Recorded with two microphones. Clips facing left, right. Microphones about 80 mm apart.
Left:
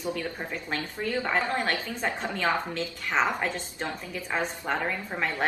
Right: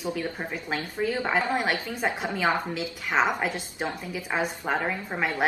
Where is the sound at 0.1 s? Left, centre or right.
Centre.